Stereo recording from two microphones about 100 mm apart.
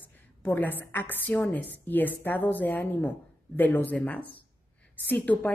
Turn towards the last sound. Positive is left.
turn(degrees=15)  # may be behind; listen again after turning